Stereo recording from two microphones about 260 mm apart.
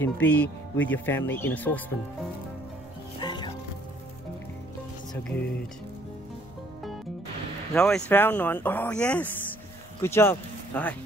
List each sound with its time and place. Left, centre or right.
0.0 s speech: centre
3.2 s music: centre
7.7 s speech: centre